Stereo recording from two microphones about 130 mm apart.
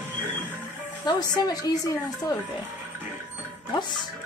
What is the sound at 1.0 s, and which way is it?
Speech, 35° left (ahead or behind).